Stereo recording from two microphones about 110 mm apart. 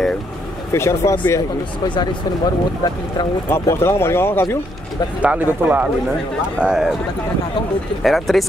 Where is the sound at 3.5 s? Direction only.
25° left (ahead or behind).